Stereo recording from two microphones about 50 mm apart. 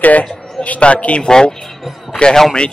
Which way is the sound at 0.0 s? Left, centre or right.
Left.